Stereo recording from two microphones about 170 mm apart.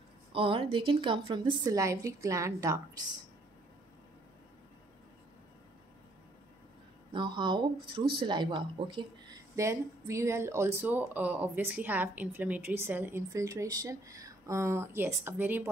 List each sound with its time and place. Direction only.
0.3 s a woman's voice: 30° right (ahead or behind)
7.1 s a woman's voice: 25° right (ahead or behind)
9.6 s speech: 15° right (ahead or behind)